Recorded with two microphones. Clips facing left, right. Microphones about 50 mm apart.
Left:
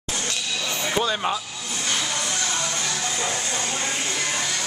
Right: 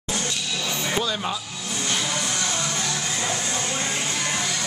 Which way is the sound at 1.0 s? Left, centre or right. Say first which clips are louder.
Left 3 dB; centre.